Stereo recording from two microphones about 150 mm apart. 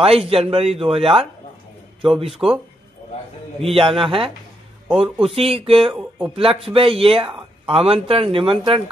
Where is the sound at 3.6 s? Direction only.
40° right (ahead or behind).